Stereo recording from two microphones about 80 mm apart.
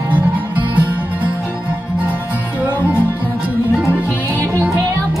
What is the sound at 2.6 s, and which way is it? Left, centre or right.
Music, centre.